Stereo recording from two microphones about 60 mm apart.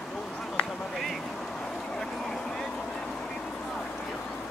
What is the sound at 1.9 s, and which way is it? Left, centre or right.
Vehicle, centre.